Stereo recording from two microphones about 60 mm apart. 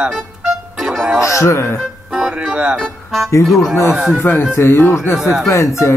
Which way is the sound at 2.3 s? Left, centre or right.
Right.